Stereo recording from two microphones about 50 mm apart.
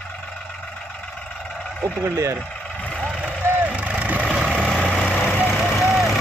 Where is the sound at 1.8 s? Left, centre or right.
Right.